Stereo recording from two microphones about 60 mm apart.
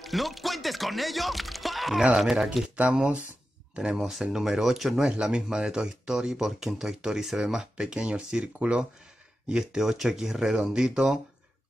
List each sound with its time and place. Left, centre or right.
0.0 s speech: centre
2.7 s speech: centre
4.0 s speech: centre